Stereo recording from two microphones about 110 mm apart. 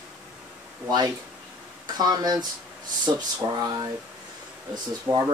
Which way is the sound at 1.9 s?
40° right (ahead or behind).